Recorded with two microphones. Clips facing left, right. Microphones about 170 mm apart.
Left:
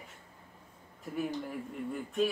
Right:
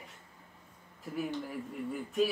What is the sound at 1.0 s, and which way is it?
Speech, centre (ahead or behind).